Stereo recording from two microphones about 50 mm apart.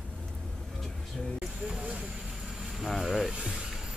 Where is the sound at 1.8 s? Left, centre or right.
Right.